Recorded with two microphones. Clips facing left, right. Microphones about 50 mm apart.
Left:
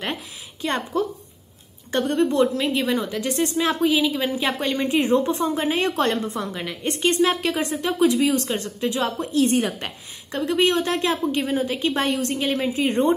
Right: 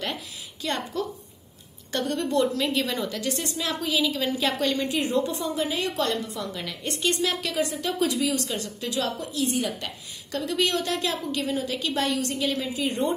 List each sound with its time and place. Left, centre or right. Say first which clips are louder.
0.0 s a woman's voice: left 3 dB; left
9.3 s a woman's voice: left 7 dB; left
10.3 s a woman's voice: left 5 dB; left